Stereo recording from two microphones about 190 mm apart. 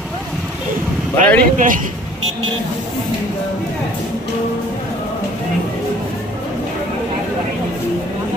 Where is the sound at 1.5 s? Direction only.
45° right (ahead or behind).